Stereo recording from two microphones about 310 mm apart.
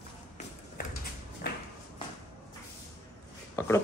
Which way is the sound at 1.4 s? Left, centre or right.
Left.